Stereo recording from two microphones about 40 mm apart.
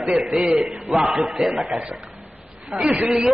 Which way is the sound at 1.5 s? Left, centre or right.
Centre.